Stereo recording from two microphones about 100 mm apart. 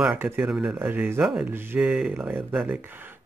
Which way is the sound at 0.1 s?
15° right (ahead or behind).